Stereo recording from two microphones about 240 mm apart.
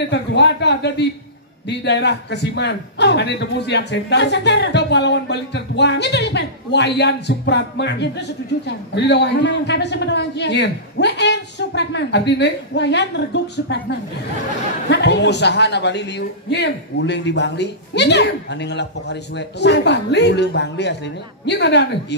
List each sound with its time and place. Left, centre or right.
0.1 s a man's voice: left